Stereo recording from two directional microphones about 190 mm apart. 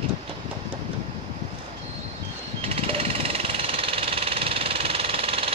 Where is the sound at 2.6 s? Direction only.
30° right (ahead or behind).